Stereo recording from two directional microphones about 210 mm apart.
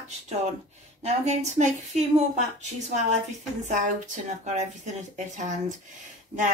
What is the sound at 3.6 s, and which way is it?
A woman's voice, 35° right (ahead or behind).